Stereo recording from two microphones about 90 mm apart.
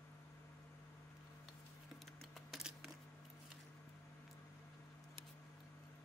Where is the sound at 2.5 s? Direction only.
Centre (ahead or behind).